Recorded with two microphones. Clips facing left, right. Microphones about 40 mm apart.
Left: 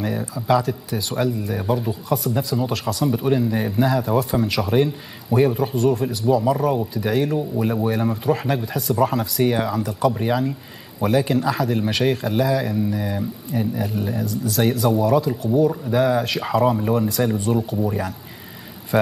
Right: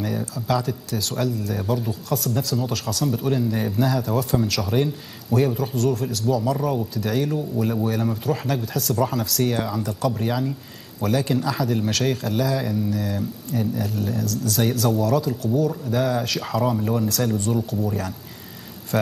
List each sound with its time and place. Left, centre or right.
0.0 s a man's voice: centre